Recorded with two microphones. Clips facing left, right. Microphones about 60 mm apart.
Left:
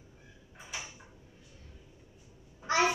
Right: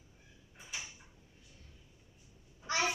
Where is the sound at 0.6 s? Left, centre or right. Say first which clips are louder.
Left 3 dB; left.